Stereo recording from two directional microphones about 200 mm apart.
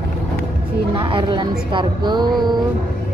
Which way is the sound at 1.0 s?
25° right (ahead or behind).